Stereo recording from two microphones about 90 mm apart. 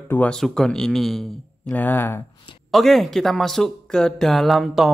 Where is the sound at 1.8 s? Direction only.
20° left (ahead or behind).